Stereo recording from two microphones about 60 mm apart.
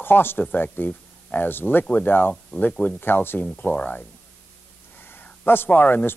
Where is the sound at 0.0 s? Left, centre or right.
Left.